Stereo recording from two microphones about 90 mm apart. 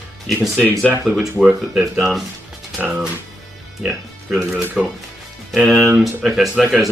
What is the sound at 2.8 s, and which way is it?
Speech, 15° right (ahead or behind).